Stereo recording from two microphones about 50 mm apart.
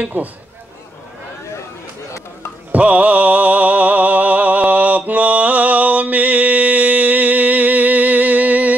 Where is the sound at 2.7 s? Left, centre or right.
Right.